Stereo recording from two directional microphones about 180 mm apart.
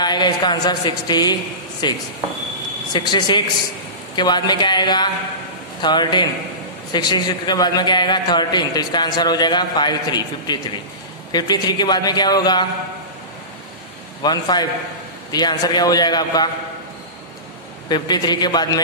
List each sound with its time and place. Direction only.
0.0 s a man's voice: 25° left (ahead or behind)
14.2 s a man's voice: 20° left (ahead or behind)
17.8 s a man's voice: 25° left (ahead or behind)